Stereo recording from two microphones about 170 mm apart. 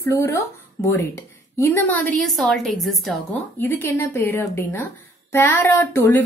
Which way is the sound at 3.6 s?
15° left (ahead or behind).